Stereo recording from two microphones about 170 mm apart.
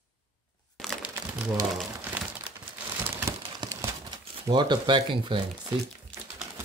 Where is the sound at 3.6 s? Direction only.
20° right (ahead or behind).